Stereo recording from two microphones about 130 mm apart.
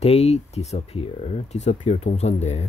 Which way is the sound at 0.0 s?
55° left (ahead or behind).